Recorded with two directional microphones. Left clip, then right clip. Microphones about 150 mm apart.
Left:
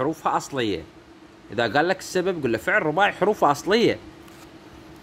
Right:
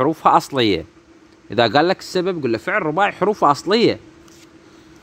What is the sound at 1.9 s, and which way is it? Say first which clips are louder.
Speech: right 3 dB; 30° right (ahead or behind).